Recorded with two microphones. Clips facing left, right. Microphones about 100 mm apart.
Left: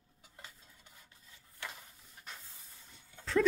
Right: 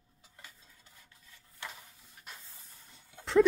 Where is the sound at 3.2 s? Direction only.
25° right (ahead or behind).